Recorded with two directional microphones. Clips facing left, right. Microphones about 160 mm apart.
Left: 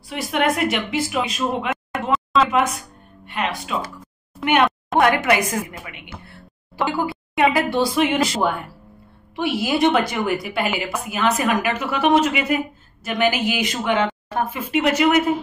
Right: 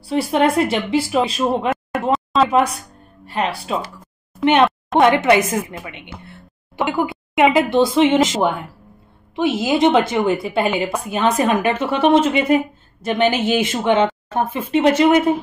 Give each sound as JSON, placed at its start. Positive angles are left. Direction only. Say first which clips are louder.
{"t": 0.0, "sound": "speech", "louder": "right 5 dB", "side_deg": -30}
{"t": 4.9, "sound": "a woman's voice", "louder": "right 4 dB", "side_deg": -25}